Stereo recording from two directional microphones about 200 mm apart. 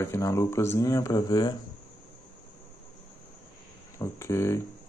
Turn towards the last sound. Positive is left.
turn(degrees=15)  # may be behind; listen again after turning